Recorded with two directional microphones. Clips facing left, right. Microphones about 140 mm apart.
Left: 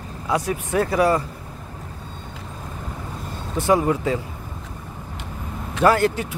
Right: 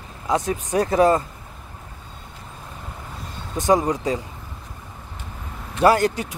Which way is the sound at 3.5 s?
15° right (ahead or behind).